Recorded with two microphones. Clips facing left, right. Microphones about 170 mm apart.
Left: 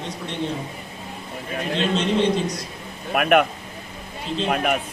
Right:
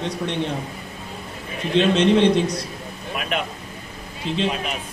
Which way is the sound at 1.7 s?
65° right (ahead or behind).